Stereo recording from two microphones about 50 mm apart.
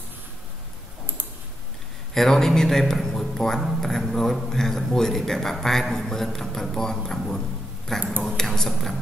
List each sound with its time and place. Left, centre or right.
2.1 s a man's voice: centre